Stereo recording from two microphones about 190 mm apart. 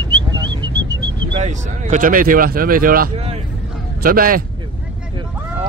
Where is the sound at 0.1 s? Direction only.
20° right (ahead or behind).